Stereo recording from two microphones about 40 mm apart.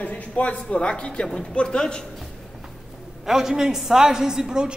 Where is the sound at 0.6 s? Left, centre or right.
Left.